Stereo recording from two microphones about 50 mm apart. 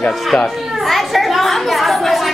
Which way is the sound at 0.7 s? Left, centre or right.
Centre.